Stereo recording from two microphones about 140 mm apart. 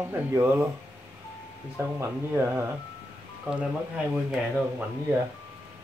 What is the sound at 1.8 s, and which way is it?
Speech, 20° right (ahead or behind).